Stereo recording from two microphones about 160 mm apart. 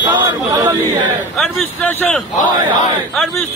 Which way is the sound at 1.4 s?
5° left (ahead or behind).